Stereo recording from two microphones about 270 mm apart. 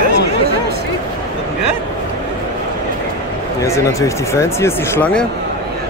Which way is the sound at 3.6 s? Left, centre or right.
Centre.